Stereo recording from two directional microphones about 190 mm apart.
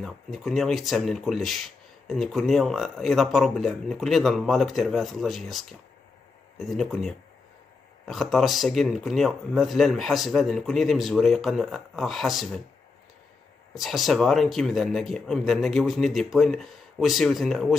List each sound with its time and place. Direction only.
0.0 s speech: centre (ahead or behind)
13.7 s speech: centre (ahead or behind)